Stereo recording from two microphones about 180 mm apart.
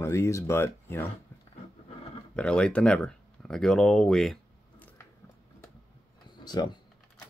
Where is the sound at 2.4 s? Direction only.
5° left (ahead or behind).